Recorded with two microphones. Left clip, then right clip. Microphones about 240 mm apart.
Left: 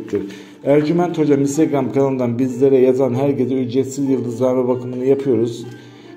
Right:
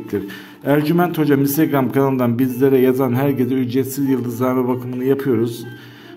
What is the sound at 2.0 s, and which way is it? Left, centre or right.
Speech, right.